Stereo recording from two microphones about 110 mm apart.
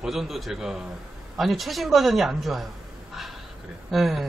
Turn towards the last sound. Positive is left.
turn(degrees=0)  # may be behind; listen again after turning